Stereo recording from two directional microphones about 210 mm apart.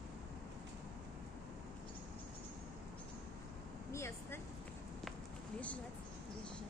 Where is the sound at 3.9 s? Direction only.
15° left (ahead or behind).